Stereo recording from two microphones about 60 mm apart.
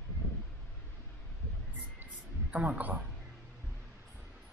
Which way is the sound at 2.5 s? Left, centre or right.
Right.